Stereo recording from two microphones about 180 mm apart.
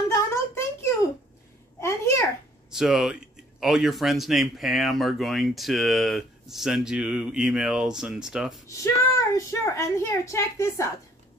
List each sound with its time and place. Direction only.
0.1 s a sound: 15° left (ahead or behind)
1.8 s babbling: 15° left (ahead or behind)
2.7 s speech: 5° right (ahead or behind)
8.6 s a woman's voice: 15° left (ahead or behind)